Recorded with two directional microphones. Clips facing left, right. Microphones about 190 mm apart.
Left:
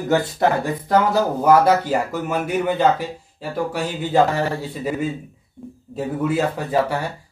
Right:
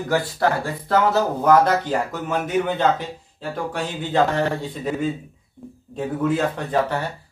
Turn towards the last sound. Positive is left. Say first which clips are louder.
# left 1 dB
turn(degrees=10)  # may be behind; listen again after turning